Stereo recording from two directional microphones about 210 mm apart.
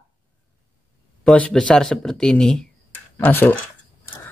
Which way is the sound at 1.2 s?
5° left (ahead or behind).